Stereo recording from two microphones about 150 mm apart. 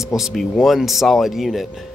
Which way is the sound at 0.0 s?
Centre (ahead or behind).